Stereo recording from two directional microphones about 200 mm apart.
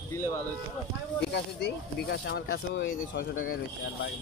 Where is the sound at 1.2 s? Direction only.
55° left (ahead or behind).